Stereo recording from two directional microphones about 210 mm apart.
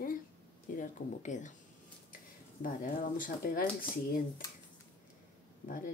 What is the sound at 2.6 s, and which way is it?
Speech, 40° left (ahead or behind).